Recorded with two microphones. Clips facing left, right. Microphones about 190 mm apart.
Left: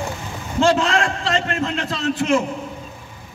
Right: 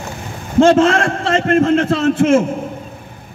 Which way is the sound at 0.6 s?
50° right (ahead or behind).